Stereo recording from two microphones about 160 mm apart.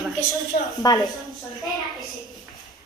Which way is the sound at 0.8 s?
25° left (ahead or behind).